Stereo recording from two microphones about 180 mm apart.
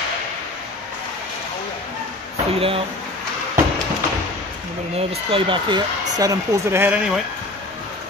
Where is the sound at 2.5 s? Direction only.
30° right (ahead or behind).